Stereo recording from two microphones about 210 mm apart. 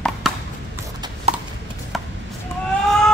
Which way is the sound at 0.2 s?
Centre (ahead or behind).